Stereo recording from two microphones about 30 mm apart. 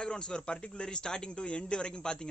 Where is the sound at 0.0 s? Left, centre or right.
Left.